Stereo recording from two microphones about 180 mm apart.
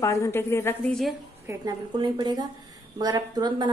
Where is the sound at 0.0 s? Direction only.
15° left (ahead or behind).